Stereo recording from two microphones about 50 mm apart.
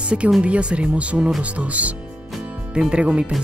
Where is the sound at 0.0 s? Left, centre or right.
Right.